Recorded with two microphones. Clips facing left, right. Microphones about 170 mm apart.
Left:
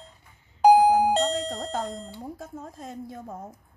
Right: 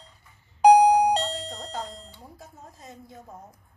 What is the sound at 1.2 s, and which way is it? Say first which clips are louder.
Doorbell: left 6 dB; 45° left (ahead or behind).